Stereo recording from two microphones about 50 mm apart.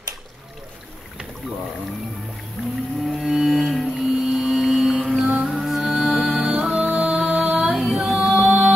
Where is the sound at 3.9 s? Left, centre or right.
Centre.